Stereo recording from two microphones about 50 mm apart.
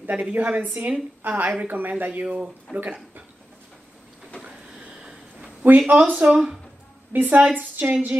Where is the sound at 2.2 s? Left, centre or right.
Centre.